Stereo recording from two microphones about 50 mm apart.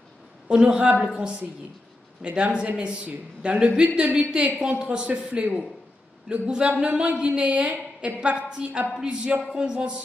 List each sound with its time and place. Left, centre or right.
0.5 s a woman's voice: centre
8.2 s a woman's voice: centre